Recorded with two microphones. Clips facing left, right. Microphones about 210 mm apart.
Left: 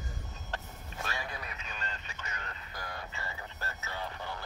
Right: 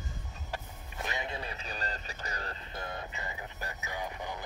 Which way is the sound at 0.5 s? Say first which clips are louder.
Right 1 dB; 20° right (ahead or behind).